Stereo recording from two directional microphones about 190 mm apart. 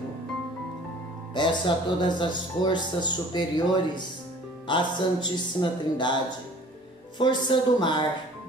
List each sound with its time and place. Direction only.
1.3 s speech: 25° left (ahead or behind)
7.2 s speech: 25° left (ahead or behind)